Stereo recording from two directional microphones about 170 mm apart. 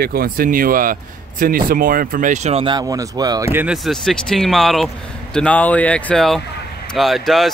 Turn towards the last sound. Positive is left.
turn(degrees=0)  # may be behind; listen again after turning